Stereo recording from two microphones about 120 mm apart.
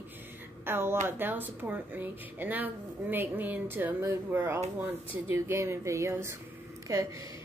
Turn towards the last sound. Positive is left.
turn(degrees=-30)  # may be behind; listen again after turning